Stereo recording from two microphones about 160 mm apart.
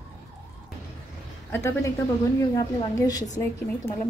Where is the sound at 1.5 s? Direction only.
15° left (ahead or behind).